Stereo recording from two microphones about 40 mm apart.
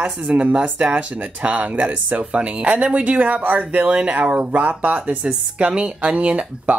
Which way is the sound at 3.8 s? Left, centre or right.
Right.